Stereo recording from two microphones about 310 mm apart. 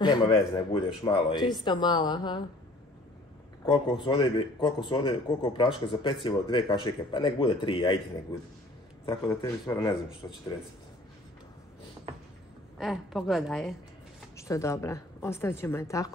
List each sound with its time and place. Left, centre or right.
0.0 s speech: centre
3.6 s speech: centre
9.0 s speech: centre
12.7 s a woman's voice: centre